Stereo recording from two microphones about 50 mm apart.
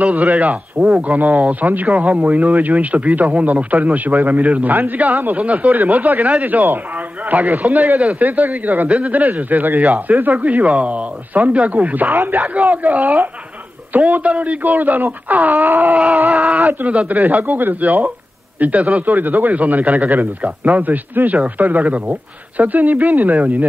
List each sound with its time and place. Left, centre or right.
0.0 s a man's voice: right